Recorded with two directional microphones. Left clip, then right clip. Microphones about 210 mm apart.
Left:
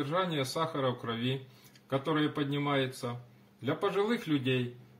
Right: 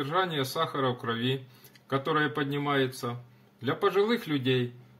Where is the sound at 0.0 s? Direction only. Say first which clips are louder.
Right 3 dB; 45° right (ahead or behind).